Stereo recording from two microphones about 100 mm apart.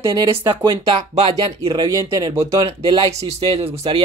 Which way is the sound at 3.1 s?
90° right.